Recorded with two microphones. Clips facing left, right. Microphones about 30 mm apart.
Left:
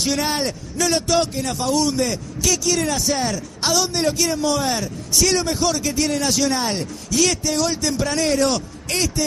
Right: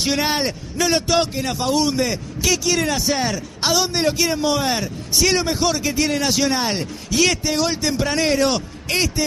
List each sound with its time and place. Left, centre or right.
0.1 s a man's voice: centre